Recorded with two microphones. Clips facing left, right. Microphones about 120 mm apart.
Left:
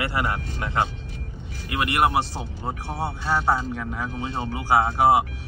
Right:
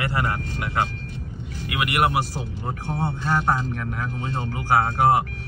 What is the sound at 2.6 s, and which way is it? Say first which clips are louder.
Speech: right 1 dB; 5° left (ahead or behind).